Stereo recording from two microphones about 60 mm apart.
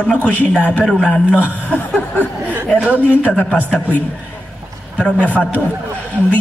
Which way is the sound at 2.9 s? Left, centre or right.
Left.